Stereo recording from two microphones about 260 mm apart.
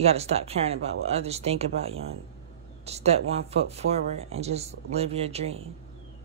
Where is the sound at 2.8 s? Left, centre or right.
Right.